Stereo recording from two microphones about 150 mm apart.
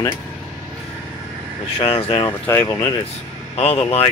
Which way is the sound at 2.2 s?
15° left (ahead or behind).